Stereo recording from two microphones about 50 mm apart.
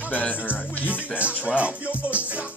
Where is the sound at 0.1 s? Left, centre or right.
Left.